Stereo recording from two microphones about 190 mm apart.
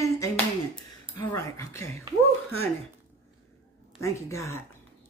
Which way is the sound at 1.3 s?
15° left (ahead or behind).